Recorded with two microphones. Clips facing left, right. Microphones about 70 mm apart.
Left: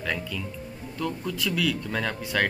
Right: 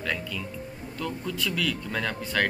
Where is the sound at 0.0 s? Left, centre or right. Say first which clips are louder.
Left 1 dB; centre.